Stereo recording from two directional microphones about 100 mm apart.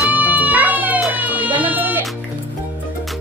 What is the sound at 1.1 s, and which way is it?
Baby cry, 15° right (ahead or behind).